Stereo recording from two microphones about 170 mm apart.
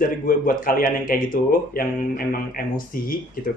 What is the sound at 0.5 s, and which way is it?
Speech, 55° left (ahead or behind).